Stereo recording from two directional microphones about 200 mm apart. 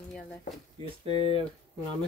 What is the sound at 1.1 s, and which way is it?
Speech, 25° left (ahead or behind).